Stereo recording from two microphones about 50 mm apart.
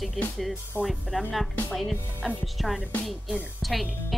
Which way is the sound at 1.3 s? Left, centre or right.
Centre.